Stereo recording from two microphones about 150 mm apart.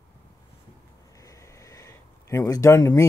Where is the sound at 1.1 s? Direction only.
20° left (ahead or behind).